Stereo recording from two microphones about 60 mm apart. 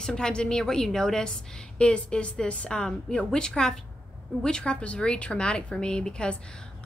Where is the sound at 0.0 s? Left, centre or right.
Centre.